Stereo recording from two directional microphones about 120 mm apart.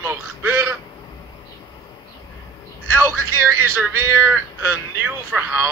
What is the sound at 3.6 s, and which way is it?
A man's voice, 20° right (ahead or behind).